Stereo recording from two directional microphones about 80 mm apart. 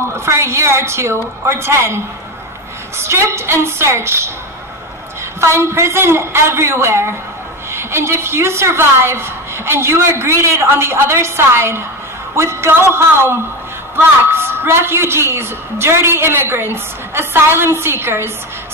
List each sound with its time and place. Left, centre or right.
0.1 s a woman's voice: right
3.0 s a woman's voice: right
5.4 s a woman's voice: right